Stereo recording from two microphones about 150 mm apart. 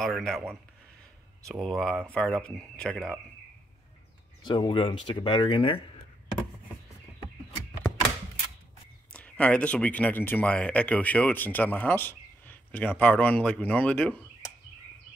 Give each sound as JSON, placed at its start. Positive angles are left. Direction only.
{"t": 0.0, "sound": "speech", "side_deg": 0}
{"t": 1.5, "sound": "speech", "side_deg": 0}
{"t": 4.4, "sound": "speech", "side_deg": 30}
{"t": 9.1, "sound": "speech", "side_deg": 10}